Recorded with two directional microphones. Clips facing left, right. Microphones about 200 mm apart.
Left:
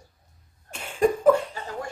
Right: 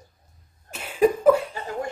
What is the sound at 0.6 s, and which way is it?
Cough, 5° right (ahead or behind).